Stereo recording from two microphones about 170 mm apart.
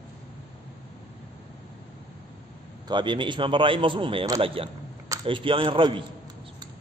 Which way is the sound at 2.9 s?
25° right (ahead or behind).